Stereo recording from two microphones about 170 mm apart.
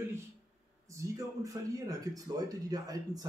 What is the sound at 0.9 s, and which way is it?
Speech, 20° right (ahead or behind).